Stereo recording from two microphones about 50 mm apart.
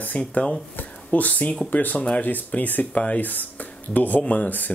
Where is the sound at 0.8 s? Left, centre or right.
Left.